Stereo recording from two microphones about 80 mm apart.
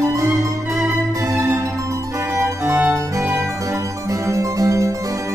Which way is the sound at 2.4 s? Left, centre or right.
Right.